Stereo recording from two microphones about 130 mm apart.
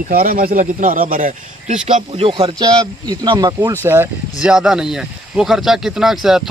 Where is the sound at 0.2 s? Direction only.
90° right; by 2.5 s 50° right (ahead or behind).